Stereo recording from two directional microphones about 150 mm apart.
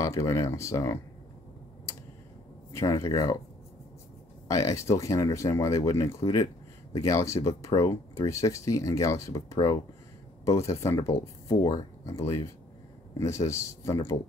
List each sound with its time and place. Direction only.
0.0 s speech: 20° left (ahead or behind)
2.7 s speech: 20° left (ahead or behind)
4.5 s speech: 20° left (ahead or behind)